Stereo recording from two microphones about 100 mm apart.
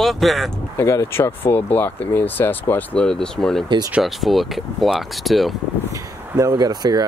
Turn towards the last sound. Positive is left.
turn(degrees=-40)  # may be behind; listen again after turning